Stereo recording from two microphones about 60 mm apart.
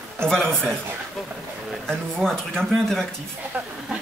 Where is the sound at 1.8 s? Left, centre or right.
Centre.